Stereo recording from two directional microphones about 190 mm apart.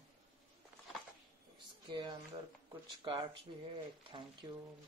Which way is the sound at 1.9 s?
25° right (ahead or behind).